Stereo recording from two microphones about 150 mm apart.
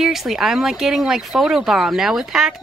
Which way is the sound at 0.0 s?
Centre (ahead or behind).